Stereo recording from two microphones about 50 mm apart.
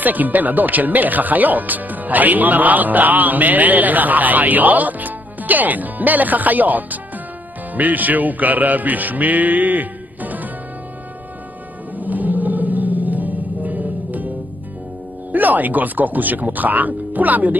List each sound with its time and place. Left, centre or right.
0.0 s speech: right
7.7 s music: right
12.0 s music: right
15.3 s speech: right